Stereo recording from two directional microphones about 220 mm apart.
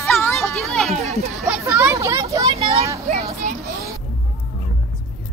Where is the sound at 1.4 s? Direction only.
10° right (ahead or behind).